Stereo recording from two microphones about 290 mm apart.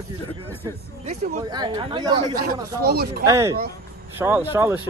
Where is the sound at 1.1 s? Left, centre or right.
Centre.